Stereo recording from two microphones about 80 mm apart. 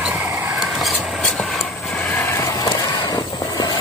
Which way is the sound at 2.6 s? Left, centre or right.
Left.